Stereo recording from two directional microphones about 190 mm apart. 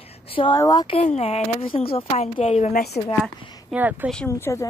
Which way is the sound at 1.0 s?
35° left (ahead or behind).